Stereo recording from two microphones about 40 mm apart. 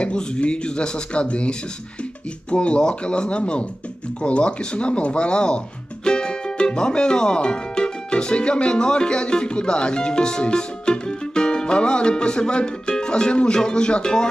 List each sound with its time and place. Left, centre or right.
0.0 s speech: left